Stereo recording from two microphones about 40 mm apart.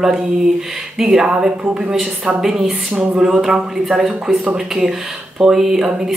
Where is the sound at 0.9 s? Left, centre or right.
Centre.